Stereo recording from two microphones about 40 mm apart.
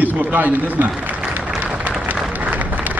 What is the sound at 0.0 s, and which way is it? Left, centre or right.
A man's voice, right.